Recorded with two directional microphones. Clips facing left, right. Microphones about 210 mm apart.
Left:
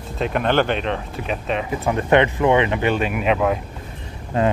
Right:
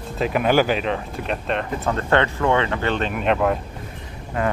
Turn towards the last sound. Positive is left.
turn(degrees=25)  # may be behind; listen again after turning